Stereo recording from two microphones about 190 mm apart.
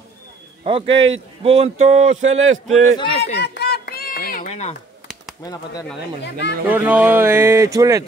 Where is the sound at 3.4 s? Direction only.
60° left (ahead or behind).